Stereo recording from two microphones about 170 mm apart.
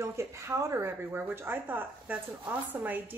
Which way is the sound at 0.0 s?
15° right (ahead or behind).